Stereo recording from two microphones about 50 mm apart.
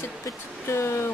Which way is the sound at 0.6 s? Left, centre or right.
Left.